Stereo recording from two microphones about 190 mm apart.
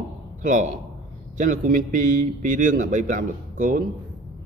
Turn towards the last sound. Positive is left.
turn(degrees=-45)  # may be behind; listen again after turning